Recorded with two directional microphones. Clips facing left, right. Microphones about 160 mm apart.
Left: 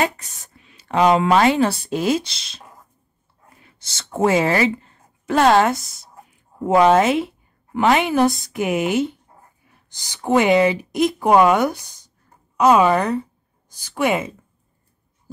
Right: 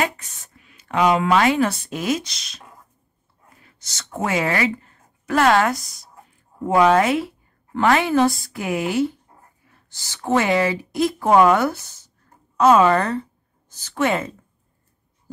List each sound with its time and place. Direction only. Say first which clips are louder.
0.6 s speech: left 2 dB; 30° left (ahead or behind)
3.6 s a woman's voice: even; 25° left (ahead or behind)